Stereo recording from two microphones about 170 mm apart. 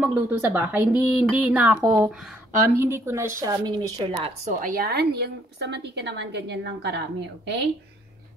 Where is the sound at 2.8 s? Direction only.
15° right (ahead or behind).